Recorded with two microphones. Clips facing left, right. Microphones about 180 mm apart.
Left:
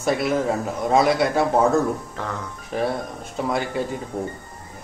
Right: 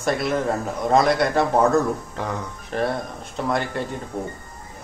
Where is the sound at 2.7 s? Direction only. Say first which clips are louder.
Even; 5° left (ahead or behind).